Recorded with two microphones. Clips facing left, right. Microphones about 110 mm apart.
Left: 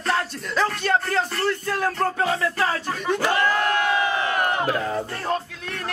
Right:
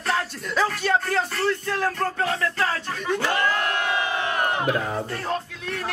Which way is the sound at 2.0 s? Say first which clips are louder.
Left 2 dB; 15° left (ahead or behind).